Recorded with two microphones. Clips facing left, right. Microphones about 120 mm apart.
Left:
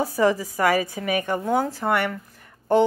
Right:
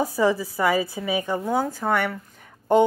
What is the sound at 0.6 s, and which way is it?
Speech, 15° right (ahead or behind).